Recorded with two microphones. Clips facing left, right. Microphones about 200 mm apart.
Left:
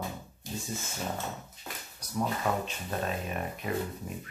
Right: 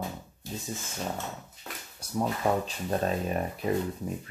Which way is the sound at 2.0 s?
25° right (ahead or behind).